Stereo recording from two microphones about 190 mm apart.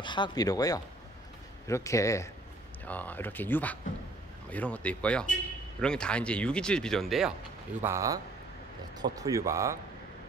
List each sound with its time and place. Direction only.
0.0 s speech: 25° left (ahead or behind); by 7.3 s centre (ahead or behind)
7.8 s speech: 15° right (ahead or behind)